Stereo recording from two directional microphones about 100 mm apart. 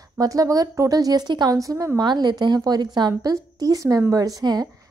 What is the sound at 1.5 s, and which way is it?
Speech, 35° right (ahead or behind).